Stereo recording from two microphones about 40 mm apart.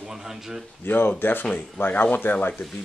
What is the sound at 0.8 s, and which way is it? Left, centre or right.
Speech, left.